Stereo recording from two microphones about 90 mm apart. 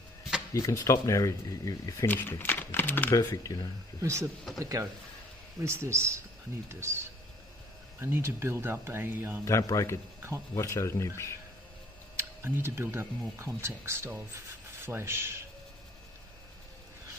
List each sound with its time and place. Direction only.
0.5 s speech: 35° left (ahead or behind)
2.0 s speech: 25° left (ahead or behind)
3.2 s speech: 45° left (ahead or behind)
4.0 s speech: 35° right (ahead or behind)
8.0 s speech: 30° right (ahead or behind)
9.4 s speech: 40° left (ahead or behind)
12.2 s speech: 25° right (ahead or behind)